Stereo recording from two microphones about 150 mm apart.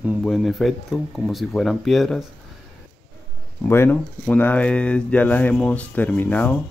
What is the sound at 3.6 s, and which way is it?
Speech, 15° left (ahead or behind).